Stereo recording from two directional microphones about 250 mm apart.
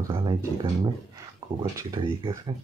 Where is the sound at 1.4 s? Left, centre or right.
Centre.